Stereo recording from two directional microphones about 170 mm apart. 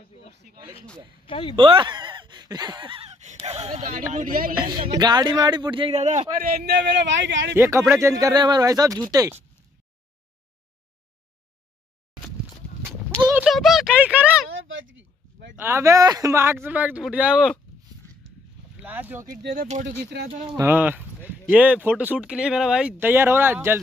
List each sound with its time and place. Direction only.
0.5 s speech: 65° right (ahead or behind)
1.2 s speech: 30° left (ahead or behind)
1.6 s speech: 30° right (ahead or behind); by 4.6 s 55° right (ahead or behind)
4.6 s speech: 25° right (ahead or behind); by 6.2 s 45° right (ahead or behind)
6.3 s a man's voice: 60° right (ahead or behind); by 7.5 s 90° right
7.5 s speech: 15° right (ahead or behind)
13.3 s a sound: centre (ahead or behind)
15.6 s speech: 15° right (ahead or behind)
18.8 s speech: 10° right (ahead or behind)
19.2 s speech: 60° right (ahead or behind)
20.5 s speech: 10° right (ahead or behind)